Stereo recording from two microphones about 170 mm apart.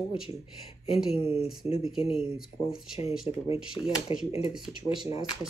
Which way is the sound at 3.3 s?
35° left (ahead or behind).